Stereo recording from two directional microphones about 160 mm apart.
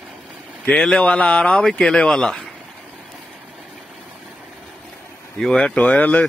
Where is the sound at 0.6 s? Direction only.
5° left (ahead or behind).